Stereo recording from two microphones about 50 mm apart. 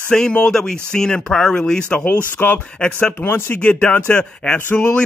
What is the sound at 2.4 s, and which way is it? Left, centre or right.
Speech, left.